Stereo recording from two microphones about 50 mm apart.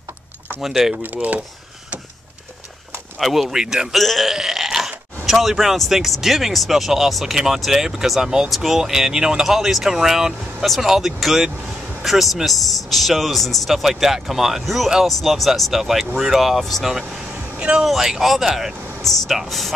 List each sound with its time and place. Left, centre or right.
0.6 s speech: centre
1.0 s speech: right
3.2 s speech: centre
3.9 s speech: centre
4.4 s a sound: centre
6.2 s speech: centre
17.1 s vehicle: centre
17.8 s speech: centre